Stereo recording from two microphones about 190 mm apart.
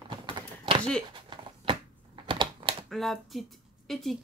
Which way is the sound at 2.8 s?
Centre (ahead or behind).